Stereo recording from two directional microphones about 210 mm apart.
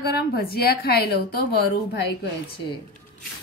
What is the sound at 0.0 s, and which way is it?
A woman's voice, 50° left (ahead or behind).